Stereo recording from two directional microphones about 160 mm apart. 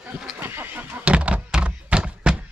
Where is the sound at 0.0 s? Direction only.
5° right (ahead or behind).